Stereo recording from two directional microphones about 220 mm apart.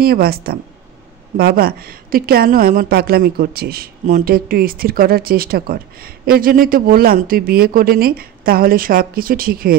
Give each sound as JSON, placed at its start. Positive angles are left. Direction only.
{"t": 0.0, "sound": "a woman's voice", "side_deg": -45}